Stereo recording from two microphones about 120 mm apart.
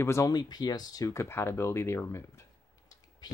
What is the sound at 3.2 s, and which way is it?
Speech, 35° left (ahead or behind).